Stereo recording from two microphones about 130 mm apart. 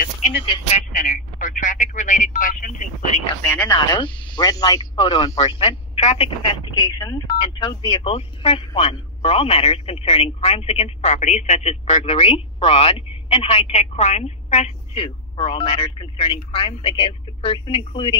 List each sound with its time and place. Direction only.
0.7 s speech: 90° left
3.4 s speech: 10° left (ahead or behind)
3.7 s speech: 35° left (ahead or behind)
4.9 s speech: 45° left (ahead or behind); by 12.0 s 60° left (ahead or behind)
12.1 s speech: 45° left (ahead or behind)